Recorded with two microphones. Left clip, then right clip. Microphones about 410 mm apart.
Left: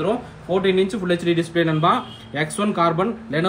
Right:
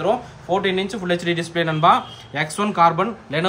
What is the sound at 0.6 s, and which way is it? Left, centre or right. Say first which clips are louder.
Speech: left 5 dB; centre.